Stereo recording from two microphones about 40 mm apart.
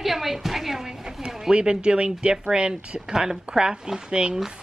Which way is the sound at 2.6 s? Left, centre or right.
Right.